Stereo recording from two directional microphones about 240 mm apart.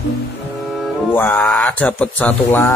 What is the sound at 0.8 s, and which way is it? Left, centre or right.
Speech, centre.